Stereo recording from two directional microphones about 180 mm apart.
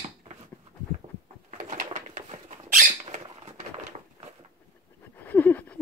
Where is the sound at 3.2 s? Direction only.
35° right (ahead or behind).